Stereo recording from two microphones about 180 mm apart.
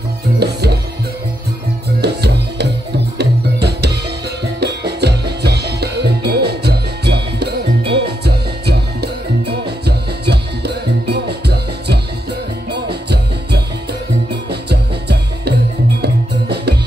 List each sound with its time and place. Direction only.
0.4 s music: 65° right (ahead or behind)
2.0 s music: 65° right (ahead or behind)